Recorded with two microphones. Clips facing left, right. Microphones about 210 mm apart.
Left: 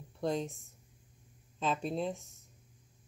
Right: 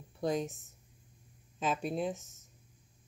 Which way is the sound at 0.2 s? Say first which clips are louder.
Right 1 dB; centre (ahead or behind).